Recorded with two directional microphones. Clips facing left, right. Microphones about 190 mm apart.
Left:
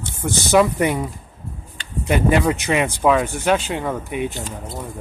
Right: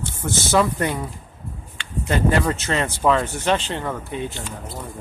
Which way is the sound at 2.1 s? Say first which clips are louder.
Left 3 dB; 15° left (ahead or behind).